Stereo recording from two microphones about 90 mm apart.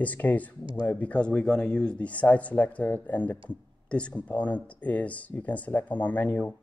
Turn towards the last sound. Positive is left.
turn(degrees=15)  # may be behind; listen again after turning